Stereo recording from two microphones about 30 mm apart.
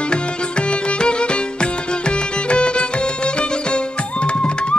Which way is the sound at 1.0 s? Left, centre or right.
Left.